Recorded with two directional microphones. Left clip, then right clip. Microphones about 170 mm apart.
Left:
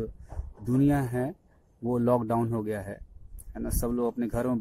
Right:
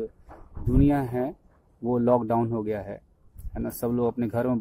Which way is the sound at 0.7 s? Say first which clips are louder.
Right 3 dB; 20° left (ahead or behind).